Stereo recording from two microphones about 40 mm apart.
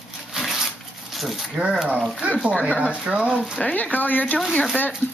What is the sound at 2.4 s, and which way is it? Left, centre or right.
Speech, right.